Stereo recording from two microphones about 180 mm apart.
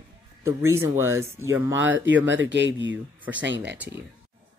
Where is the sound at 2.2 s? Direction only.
90° right.